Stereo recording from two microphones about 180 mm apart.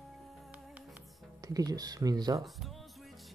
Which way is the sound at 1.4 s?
20° right (ahead or behind).